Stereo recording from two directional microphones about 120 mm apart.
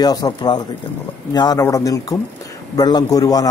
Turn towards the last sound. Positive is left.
turn(degrees=30)  # may be behind; listen again after turning